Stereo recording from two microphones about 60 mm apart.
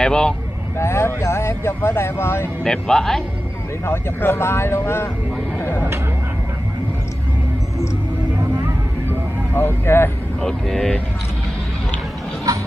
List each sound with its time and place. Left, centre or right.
0.0 s speech: centre
0.7 s speech: left
2.6 s speech: centre
3.8 s speech: left
5.6 s a sound: left
9.5 s speech: left
10.4 s speech: centre
12.5 s music: right